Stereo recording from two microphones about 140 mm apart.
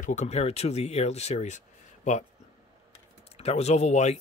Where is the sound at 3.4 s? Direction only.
50° left (ahead or behind).